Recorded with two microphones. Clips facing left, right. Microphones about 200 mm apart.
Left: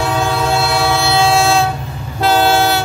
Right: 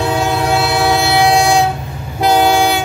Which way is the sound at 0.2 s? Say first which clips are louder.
Right 1 dB; 20° right (ahead or behind).